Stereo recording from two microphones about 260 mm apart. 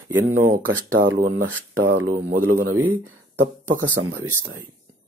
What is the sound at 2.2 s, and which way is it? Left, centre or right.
Speech, right.